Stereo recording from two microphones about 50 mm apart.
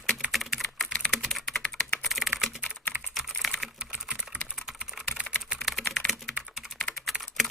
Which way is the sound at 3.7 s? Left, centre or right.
Right.